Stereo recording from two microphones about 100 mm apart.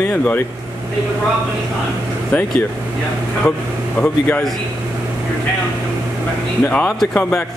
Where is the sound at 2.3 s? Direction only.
10° left (ahead or behind).